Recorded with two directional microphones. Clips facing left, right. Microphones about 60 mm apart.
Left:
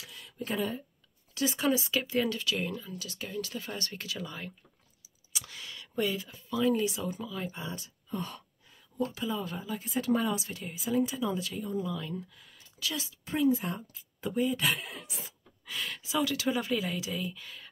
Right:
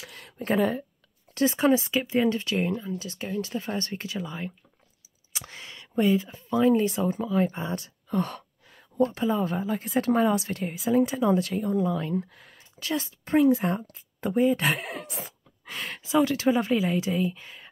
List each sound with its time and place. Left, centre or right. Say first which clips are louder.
0.0 s a woman's voice: right 3 dB; right
1.3 s speech: right 7 dB; right
5.3 s speech: right 2 dB; right
6.3 s speech: right 6 dB; right
7.7 s a sound: right 9 dB; right
9.0 s speech: right 9 dB; right
15.6 s speech: right 2 dB; right